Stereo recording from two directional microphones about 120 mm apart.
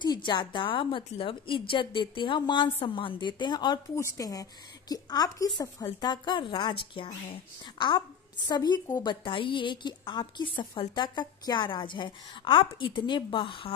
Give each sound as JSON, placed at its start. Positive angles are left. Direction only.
{"t": 0.0, "sound": "a woman's voice", "side_deg": 40}
{"t": 3.9, "sound": "a woman's voice", "side_deg": 25}
{"t": 8.5, "sound": "a woman's voice", "side_deg": 35}